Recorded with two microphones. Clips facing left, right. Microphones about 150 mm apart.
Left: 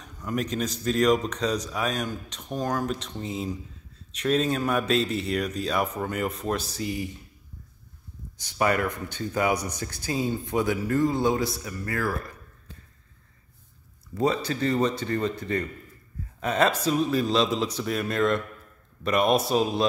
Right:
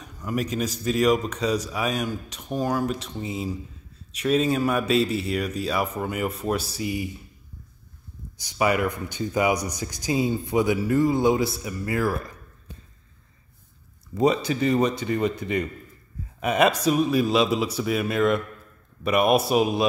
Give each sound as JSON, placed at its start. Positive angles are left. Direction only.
{"t": 0.0, "sound": "speech", "side_deg": -5}
{"t": 8.4, "sound": "speech", "side_deg": -10}
{"t": 12.7, "sound": "a sound", "side_deg": -15}
{"t": 14.1, "sound": "speech", "side_deg": -15}